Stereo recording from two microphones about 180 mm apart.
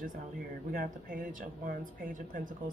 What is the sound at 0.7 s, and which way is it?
Speech, 50° right (ahead or behind).